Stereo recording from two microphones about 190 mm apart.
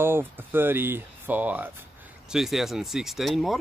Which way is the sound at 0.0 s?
10° right (ahead or behind).